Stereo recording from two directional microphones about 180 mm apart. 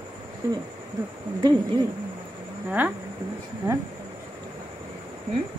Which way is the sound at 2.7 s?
10° right (ahead or behind).